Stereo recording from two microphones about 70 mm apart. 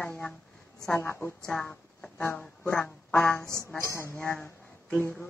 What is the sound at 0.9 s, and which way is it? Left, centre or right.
Speech, left.